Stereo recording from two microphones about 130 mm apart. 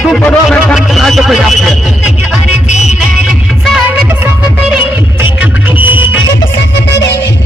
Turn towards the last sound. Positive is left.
turn(degrees=-15)  # may be behind; listen again after turning